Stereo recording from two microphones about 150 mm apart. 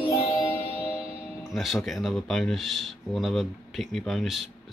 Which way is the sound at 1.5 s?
Centre (ahead or behind).